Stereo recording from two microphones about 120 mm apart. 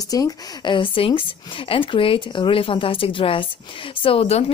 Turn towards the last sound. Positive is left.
turn(degrees=60)  # may be behind; listen again after turning